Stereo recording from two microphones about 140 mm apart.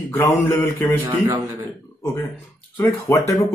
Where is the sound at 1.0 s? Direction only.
35° right (ahead or behind).